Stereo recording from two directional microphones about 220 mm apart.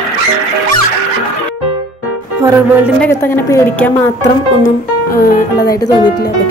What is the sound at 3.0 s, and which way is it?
Speech, 10° left (ahead or behind).